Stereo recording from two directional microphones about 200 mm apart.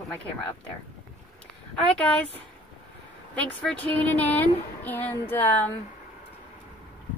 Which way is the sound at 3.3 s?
5° left (ahead or behind).